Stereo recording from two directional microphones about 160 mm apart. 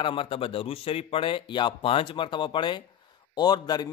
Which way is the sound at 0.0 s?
35° left (ahead or behind).